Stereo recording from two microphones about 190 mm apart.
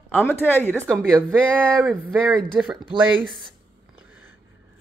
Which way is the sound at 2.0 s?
5° right (ahead or behind).